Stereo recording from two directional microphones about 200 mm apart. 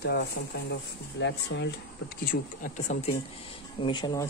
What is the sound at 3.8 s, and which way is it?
Speech, 20° left (ahead or behind).